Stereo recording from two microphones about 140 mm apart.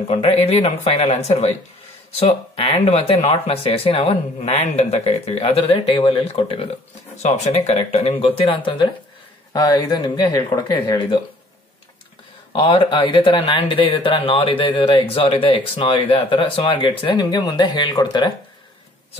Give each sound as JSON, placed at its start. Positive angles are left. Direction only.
{"t": 0.1, "sound": "speech", "side_deg": 50}
{"t": 7.2, "sound": "speech", "side_deg": 50}
{"t": 12.5, "sound": "speech", "side_deg": 40}
{"t": 17.2, "sound": "speech", "side_deg": 25}